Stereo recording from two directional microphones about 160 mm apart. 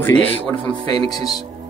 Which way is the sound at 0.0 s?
10° left (ahead or behind).